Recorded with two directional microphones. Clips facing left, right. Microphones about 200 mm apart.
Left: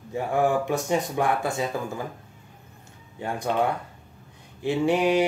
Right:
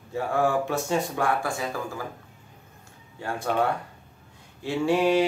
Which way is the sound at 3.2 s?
20° left (ahead or behind).